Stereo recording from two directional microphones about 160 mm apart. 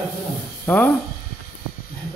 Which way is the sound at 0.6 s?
10° left (ahead or behind).